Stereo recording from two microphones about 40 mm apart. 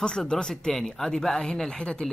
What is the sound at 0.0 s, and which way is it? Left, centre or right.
A woman's voice, centre.